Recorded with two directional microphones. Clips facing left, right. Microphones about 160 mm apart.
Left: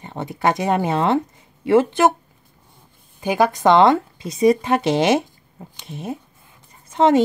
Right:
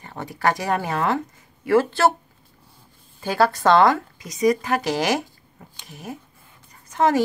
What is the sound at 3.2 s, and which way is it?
Speech, 15° left (ahead or behind).